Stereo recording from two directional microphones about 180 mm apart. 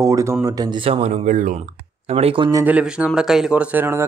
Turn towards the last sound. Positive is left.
turn(degrees=-10)  # may be behind; listen again after turning